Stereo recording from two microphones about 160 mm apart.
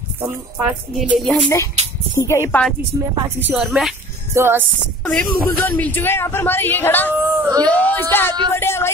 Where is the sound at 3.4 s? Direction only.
10° right (ahead or behind).